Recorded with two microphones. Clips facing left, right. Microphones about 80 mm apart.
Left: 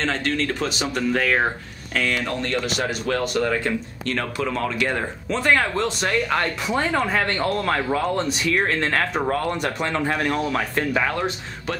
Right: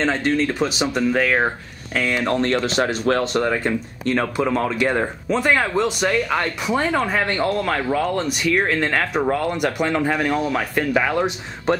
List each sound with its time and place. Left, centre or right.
0.0 s speech: centre
2.2 s speech: right
4.0 s speech: right; by 8.2 s centre
8.5 s speech: centre